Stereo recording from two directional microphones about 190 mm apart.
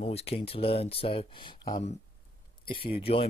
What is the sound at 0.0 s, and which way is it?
Speech, 35° left (ahead or behind).